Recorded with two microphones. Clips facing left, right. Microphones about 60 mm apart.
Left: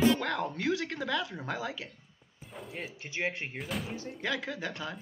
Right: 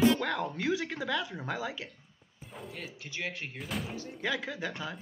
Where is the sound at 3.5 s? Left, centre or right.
Centre.